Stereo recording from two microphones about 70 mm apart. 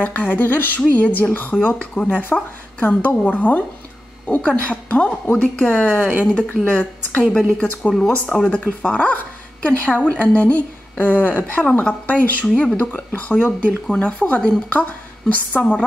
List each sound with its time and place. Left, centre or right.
0.0 s a woman's voice: left
12.4 s speech: centre
12.7 s a woman's voice: left